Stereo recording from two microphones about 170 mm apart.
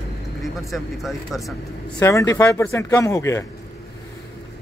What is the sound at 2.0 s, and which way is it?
Speech, 20° left (ahead or behind).